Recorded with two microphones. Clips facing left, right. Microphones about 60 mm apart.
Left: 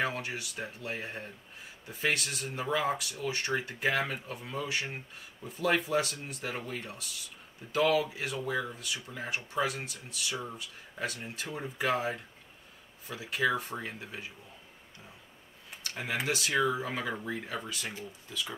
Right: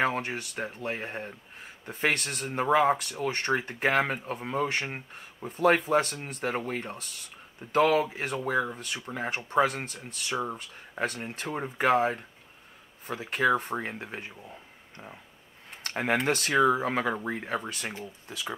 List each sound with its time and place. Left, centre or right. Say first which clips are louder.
0.0 s speech: right 5 dB; right
15.8 s speech: right 7 dB; right